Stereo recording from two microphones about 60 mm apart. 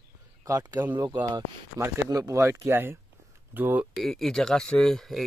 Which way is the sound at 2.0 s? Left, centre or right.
Right.